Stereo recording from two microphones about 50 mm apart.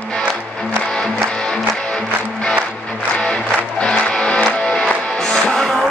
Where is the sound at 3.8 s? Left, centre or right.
Centre.